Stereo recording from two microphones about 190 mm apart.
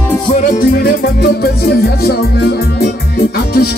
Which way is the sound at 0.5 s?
50° left (ahead or behind).